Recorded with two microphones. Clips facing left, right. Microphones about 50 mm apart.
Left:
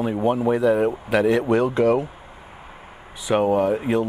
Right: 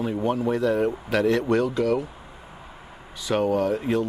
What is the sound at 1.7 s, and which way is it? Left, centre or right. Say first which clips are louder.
Speech: left 5 dB; left.